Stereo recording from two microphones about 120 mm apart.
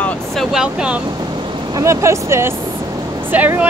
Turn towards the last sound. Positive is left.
turn(degrees=-15)  # may be behind; listen again after turning